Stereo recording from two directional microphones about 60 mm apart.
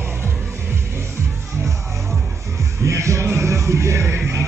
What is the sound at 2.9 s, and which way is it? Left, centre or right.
Music, right.